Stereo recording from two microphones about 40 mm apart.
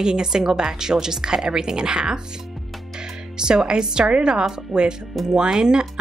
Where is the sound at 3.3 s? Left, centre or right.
Centre.